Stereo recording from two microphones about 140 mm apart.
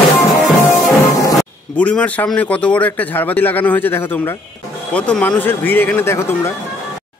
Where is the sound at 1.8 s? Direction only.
10° left (ahead or behind).